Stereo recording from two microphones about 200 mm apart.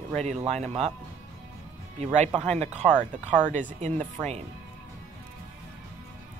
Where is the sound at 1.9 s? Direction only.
35° right (ahead or behind).